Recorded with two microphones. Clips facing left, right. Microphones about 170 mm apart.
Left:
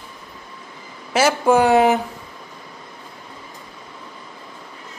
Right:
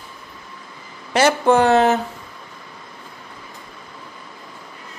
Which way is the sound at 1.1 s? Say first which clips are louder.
Right 1 dB; 5° left (ahead or behind).